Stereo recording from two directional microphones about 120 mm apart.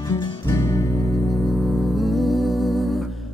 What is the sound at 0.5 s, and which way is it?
Music, 25° left (ahead or behind).